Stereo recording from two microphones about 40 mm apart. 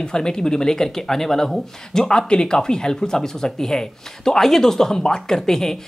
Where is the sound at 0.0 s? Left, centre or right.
Centre.